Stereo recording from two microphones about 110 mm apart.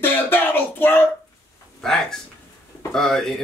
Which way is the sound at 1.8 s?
5° left (ahead or behind).